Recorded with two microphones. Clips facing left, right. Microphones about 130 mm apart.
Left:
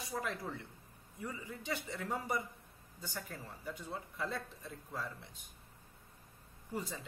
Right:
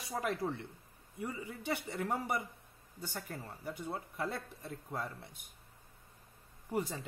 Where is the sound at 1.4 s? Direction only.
60° right (ahead or behind).